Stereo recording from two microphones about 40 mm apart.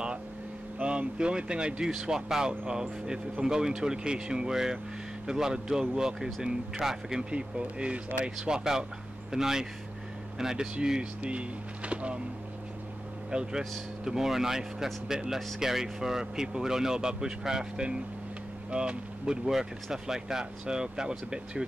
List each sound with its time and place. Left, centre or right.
0.7 s speech: right
8.4 s speech: centre
13.3 s speech: centre
19.4 s speech: centre